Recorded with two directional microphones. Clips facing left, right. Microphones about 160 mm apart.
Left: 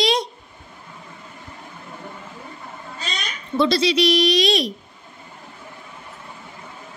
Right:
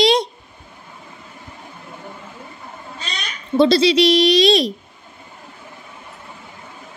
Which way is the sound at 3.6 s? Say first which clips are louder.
Right 5 dB; 30° right (ahead or behind).